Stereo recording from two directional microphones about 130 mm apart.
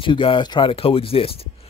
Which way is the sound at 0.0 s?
40° left (ahead or behind).